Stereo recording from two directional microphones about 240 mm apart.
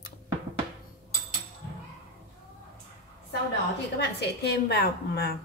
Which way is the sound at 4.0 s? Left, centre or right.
Left.